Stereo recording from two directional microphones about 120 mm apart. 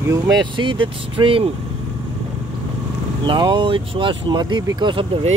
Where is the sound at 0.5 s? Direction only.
45° right (ahead or behind).